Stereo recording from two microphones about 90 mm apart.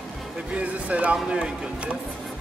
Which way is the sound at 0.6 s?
15° right (ahead or behind).